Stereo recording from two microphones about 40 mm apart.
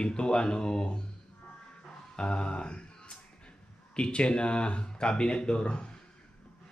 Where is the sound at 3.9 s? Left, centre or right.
Left.